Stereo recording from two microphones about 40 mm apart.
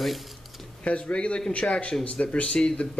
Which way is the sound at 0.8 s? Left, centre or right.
Left.